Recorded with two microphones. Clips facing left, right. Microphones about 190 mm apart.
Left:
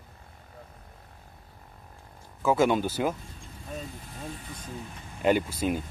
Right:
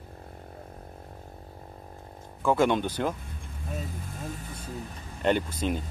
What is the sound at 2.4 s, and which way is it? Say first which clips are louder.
Speech: even; 5° left (ahead or behind).